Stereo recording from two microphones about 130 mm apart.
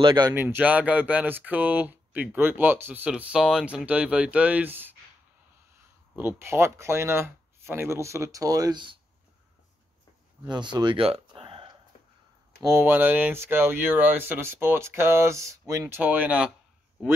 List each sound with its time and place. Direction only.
0.0 s speech: 35° right (ahead or behind)
0.3 s speech: 15° right (ahead or behind)
6.1 s speech: 15° right (ahead or behind); by 8.9 s 35° right (ahead or behind)
10.4 s speech: 35° right (ahead or behind)
11.1 s a sound: 40° right (ahead or behind)
12.5 s speech: 20° right (ahead or behind)
16.0 s speech: 10° right (ahead or behind)